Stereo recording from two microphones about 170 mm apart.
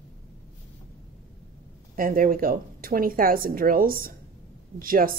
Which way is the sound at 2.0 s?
55° right (ahead or behind).